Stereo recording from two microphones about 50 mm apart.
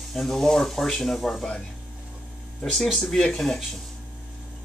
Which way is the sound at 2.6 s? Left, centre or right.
Centre.